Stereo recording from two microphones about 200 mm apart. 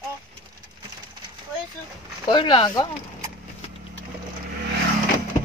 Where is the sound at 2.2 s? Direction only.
25° left (ahead or behind).